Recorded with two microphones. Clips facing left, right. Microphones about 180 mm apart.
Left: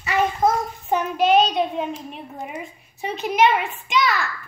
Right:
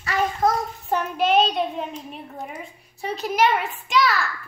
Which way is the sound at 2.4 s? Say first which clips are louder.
Left 2 dB; centre (ahead or behind).